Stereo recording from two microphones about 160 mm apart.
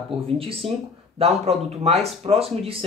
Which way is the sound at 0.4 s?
35° right (ahead or behind).